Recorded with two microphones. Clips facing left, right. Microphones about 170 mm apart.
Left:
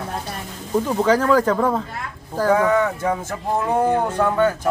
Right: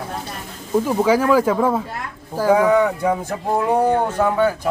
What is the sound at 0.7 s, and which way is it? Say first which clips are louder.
Speech: right 1 dB; 10° right (ahead or behind).